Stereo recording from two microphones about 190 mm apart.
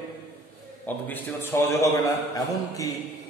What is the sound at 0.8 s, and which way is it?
A man's voice, 10° left (ahead or behind).